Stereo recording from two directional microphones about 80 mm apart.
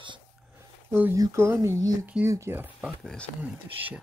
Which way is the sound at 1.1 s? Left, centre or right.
Right.